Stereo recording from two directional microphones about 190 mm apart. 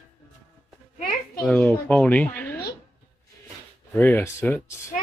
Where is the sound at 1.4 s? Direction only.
5° left (ahead or behind).